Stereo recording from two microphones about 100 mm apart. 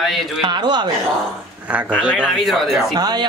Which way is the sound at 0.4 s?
50° right (ahead or behind).